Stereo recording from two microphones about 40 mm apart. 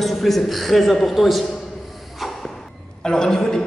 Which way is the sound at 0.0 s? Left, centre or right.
Centre.